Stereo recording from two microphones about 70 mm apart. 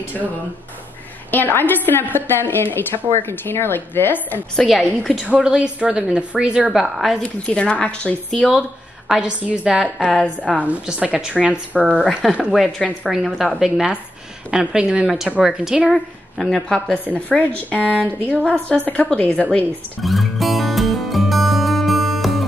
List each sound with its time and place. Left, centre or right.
1.3 s a woman's voice: left
4.6 s a woman's voice: centre
5.3 s a woman's voice: centre
6.7 s a woman's voice: centre
7.2 s a woman's voice: centre
9.1 s a woman's voice: centre
10.1 s a woman's voice: centre
10.6 s a woman's voice: centre
11.7 s a woman's voice: centre
12.4 s a woman's voice: centre
15.9 s a woman's voice: centre
20.0 s music: centre